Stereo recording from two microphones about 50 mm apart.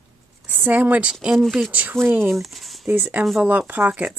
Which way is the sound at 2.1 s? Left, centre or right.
Right.